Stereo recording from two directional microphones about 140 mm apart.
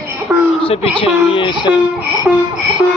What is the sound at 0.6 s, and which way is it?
Speech, 45° left (ahead or behind).